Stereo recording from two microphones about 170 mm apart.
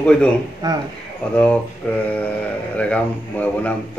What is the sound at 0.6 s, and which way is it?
Speech, 20° right (ahead or behind).